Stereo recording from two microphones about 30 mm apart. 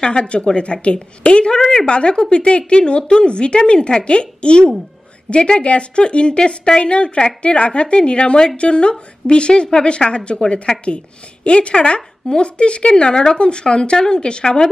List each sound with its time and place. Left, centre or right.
0.0 s speech: left
1.6 s speech: centre
1.9 s speech: left